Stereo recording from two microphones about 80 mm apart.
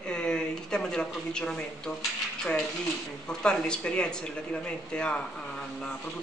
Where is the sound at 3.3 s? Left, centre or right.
Centre.